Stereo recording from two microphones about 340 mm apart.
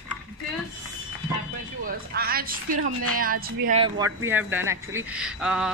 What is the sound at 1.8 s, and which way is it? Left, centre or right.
Speech, right.